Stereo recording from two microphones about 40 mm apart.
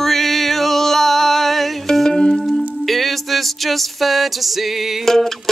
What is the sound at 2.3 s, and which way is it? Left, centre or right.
Music, centre.